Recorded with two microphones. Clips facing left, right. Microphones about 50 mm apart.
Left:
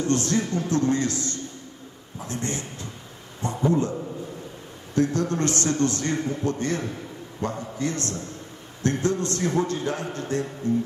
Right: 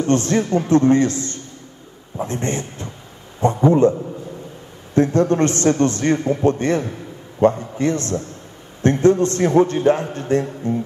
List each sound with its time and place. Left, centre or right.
0.1 s a man's voice: right
4.9 s a man's voice: right